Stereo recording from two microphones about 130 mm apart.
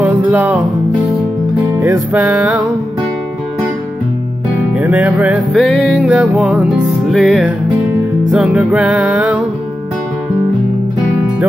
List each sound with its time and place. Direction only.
0.0 s music: 15° right (ahead or behind)
1.6 s music: 15° right (ahead or behind)
4.7 s music: 10° right (ahead or behind)
5.5 s music: centre (ahead or behind)